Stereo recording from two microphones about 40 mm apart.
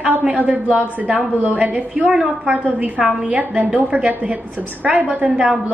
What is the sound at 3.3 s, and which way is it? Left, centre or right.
A woman's voice, right.